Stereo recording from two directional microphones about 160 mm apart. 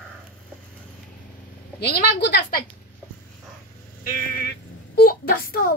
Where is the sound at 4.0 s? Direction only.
65° left (ahead or behind).